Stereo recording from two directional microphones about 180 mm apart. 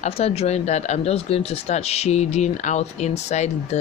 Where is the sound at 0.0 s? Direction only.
35° left (ahead or behind).